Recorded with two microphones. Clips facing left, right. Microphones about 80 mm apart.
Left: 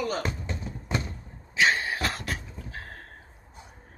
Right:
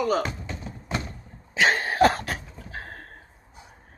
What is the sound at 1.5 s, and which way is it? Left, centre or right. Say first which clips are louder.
Cough: right 3 dB; right.